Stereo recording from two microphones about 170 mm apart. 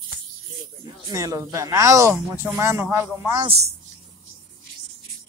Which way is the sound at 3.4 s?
35° right (ahead or behind).